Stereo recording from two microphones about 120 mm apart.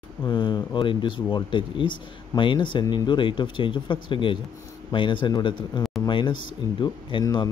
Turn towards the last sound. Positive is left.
turn(degrees=35)  # may be behind; listen again after turning